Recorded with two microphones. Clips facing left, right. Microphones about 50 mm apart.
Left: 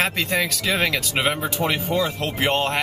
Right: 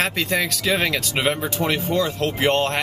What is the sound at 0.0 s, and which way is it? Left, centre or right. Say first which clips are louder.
Speech: even; centre.